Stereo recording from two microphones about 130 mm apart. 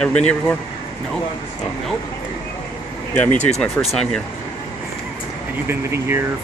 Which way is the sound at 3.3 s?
65° left (ahead or behind).